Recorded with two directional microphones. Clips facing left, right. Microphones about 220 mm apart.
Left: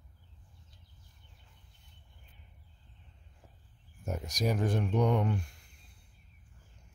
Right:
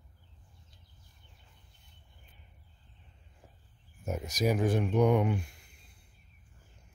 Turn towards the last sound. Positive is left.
turn(degrees=-10)  # may be behind; listen again after turning